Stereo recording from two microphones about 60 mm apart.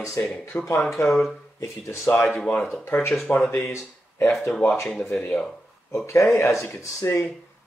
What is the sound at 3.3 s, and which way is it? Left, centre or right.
Speech, left.